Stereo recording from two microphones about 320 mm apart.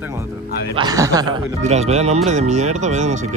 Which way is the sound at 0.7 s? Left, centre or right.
Centre.